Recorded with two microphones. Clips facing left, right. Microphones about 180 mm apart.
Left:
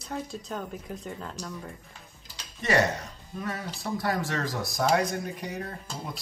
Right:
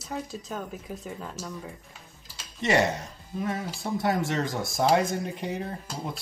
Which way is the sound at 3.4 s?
20° right (ahead or behind).